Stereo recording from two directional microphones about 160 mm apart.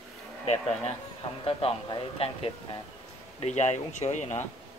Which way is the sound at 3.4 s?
45° left (ahead or behind).